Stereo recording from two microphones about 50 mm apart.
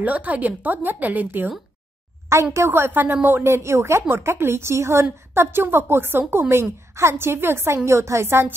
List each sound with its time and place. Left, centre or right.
0.0 s a woman's voice: right
2.3 s a woman's voice: right
2.7 s a woman's voice: right
3.4 s a woman's voice: right
4.1 s a woman's voice: right
5.3 s a woman's voice: right
6.5 s a woman's voice: right
8.3 s a woman's voice: right